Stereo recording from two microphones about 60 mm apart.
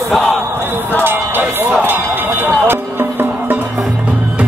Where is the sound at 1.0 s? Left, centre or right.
Right.